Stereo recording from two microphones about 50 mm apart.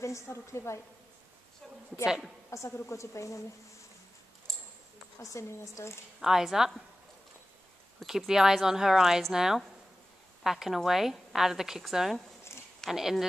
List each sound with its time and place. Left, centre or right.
0.0 s a woman's voice: left
2.0 s a woman's voice: centre
2.5 s a woman's voice: left
4.5 s a sound: centre
5.2 s a woman's voice: left
6.2 s a woman's voice: centre
8.3 s a woman's voice: centre
12.8 s speech: centre